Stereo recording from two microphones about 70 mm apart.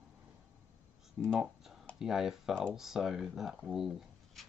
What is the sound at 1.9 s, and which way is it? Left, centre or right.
Speech, centre.